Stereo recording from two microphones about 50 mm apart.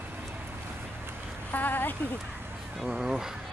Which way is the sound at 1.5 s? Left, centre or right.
Left.